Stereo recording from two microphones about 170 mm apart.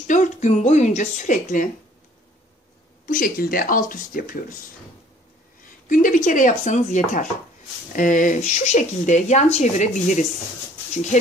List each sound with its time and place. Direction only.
0.0 s speech: 45° left (ahead or behind)
3.1 s speech: 55° left (ahead or behind)
5.9 s speech: 50° left (ahead or behind)